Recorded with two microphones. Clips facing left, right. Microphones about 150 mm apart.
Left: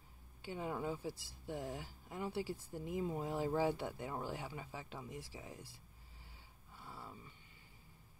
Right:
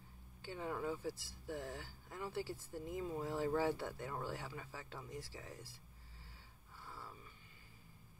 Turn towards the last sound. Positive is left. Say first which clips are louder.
# left 1 dB
turn(degrees=25)  # may be behind; listen again after turning